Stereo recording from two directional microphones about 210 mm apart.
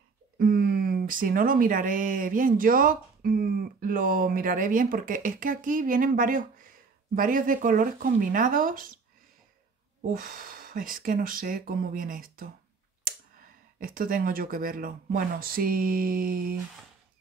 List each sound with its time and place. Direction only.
0.4 s speech: 45° right (ahead or behind)
10.1 s speech: 40° right (ahead or behind)
13.7 s speech: 45° right (ahead or behind)